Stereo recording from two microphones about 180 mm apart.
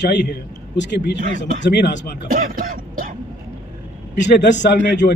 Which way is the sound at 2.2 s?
50° right (ahead or behind).